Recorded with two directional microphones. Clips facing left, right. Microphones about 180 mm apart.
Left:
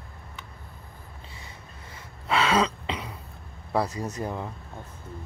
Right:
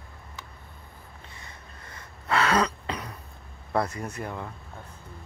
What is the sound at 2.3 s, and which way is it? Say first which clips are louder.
Throat clearing: left 1 dB; centre (ahead or behind).